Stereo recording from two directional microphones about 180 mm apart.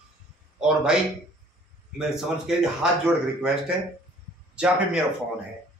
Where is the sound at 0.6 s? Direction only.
5° right (ahead or behind).